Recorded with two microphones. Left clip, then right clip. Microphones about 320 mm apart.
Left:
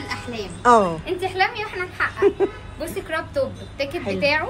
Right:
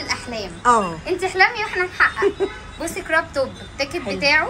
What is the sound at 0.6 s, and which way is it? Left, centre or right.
A woman's voice, centre.